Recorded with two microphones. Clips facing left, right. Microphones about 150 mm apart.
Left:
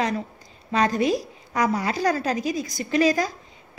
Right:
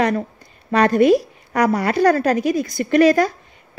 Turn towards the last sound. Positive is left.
turn(degrees=-65)  # may be behind; listen again after turning